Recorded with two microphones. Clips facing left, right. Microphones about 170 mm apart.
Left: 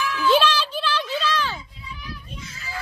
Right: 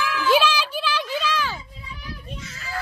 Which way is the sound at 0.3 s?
10° right (ahead or behind).